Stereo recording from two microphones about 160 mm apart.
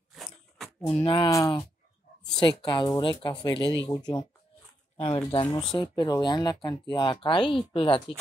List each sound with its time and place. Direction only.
0.1 s biting: centre (ahead or behind)
1.0 s a woman's voice: 30° left (ahead or behind)